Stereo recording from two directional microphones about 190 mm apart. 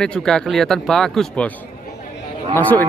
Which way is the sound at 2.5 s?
10° left (ahead or behind).